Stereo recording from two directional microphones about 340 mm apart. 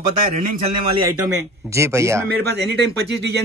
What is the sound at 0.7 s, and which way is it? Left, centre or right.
Speech, right.